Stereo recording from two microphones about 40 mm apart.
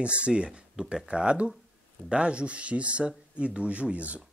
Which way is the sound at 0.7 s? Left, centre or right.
Centre.